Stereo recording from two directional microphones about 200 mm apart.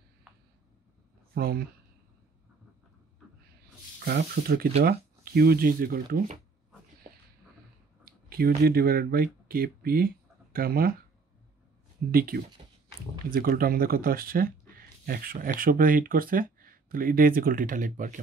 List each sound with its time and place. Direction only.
1.3 s speech: 50° right (ahead or behind)
4.0 s speech: 50° right (ahead or behind)
8.3 s speech: 50° right (ahead or behind)
12.1 s speech: 50° right (ahead or behind)